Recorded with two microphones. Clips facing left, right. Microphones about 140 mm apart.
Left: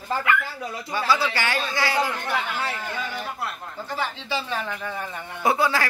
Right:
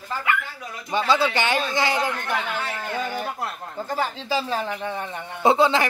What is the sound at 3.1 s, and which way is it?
A man's voice, 40° right (ahead or behind).